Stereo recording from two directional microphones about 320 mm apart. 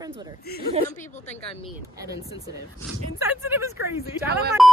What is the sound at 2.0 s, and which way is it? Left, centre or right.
A woman's voice, centre.